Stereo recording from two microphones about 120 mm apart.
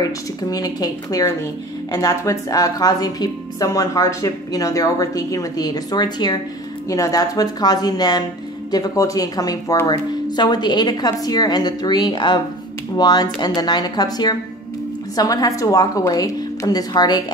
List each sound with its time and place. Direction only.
0.0 s a woman's voice: 30° left (ahead or behind)